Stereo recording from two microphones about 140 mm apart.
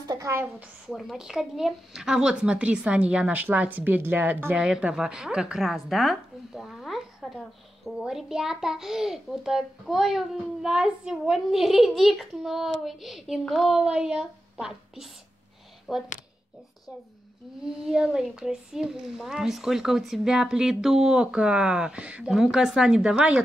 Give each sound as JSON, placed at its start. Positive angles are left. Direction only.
{"t": 0.0, "sound": "a woman's voice", "side_deg": -25}
{"t": 0.8, "sound": "a woman's voice", "side_deg": 0}
{"t": 17.9, "sound": "a woman's voice", "side_deg": -5}